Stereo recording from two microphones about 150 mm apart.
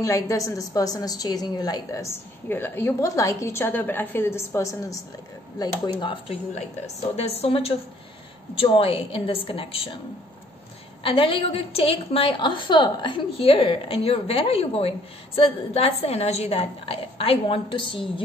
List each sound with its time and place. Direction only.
0.0 s a woman's voice: 20° left (ahead or behind)
5.6 s a woman's voice: 35° left (ahead or behind)
11.0 s a woman's voice: 35° left (ahead or behind)